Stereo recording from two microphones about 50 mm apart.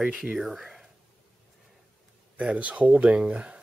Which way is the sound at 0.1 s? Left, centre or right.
Centre.